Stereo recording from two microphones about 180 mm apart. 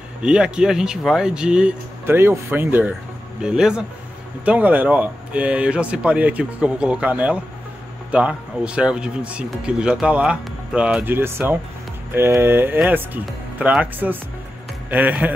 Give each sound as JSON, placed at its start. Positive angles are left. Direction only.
{"t": 0.2, "sound": "speech", "side_deg": -5}